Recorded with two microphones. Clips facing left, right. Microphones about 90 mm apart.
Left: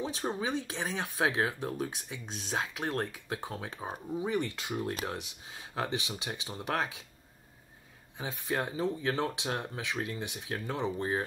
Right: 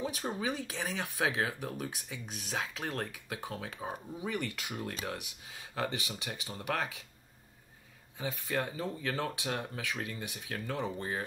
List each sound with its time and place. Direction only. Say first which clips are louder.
0.0 s speech: left 1 dB; 30° left (ahead or behind)
8.2 s speech: left 1 dB; 20° left (ahead or behind)